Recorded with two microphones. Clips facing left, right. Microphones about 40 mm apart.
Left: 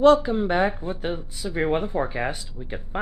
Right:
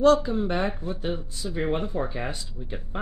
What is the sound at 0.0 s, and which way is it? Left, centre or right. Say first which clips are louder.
Speech: left 3 dB; left.